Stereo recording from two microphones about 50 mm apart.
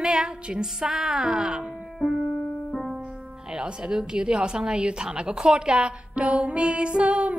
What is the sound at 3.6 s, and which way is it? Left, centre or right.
A woman's voice, centre.